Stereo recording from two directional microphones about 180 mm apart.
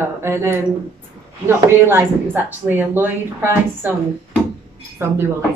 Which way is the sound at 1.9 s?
10° right (ahead or behind).